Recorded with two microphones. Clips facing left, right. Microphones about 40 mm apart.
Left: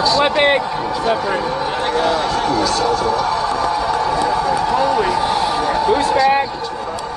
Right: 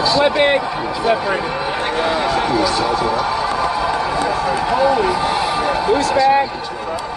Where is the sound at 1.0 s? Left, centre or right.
Centre.